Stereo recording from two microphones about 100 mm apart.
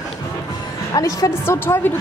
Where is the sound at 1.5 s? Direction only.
25° left (ahead or behind).